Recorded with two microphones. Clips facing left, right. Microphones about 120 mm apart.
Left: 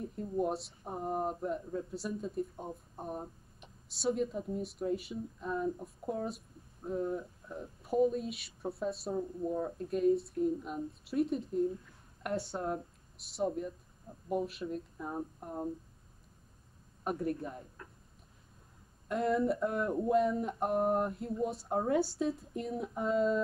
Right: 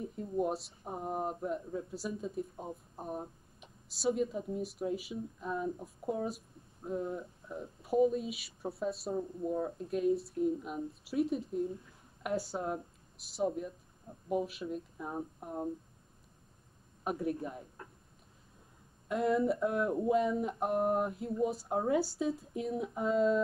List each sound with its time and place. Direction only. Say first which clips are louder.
0.0 s speech: even; centre (ahead or behind)
17.0 s speech: even; centre (ahead or behind)
19.0 s speech: right 1 dB; centre (ahead or behind)